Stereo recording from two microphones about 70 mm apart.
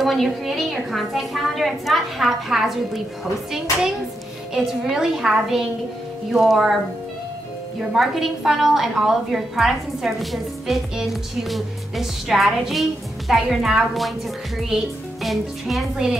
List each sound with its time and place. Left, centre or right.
0.0 s a woman's voice: centre
4.6 s a woman's voice: centre
7.9 s a woman's voice: centre
15.2 s a woman's voice: centre